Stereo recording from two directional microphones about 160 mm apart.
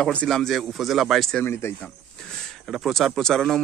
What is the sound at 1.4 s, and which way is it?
Speech, 15° left (ahead or behind).